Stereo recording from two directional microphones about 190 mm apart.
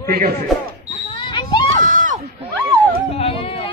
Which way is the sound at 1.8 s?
45° right (ahead or behind).